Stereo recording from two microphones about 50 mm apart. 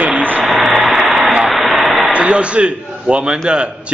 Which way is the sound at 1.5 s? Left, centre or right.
Centre.